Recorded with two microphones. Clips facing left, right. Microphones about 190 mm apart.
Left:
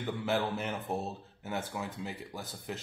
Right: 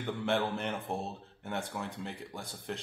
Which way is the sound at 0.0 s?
5° left (ahead or behind).